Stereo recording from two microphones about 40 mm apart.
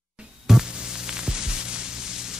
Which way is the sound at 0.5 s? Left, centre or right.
Centre.